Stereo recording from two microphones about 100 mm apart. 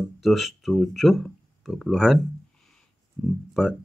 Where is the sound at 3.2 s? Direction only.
5° right (ahead or behind).